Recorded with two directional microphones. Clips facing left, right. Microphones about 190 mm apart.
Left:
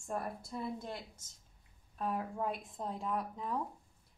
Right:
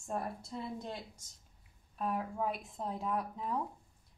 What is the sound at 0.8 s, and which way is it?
Speech, 15° right (ahead or behind).